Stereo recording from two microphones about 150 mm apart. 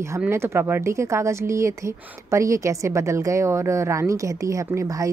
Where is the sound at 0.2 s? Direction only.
15° right (ahead or behind).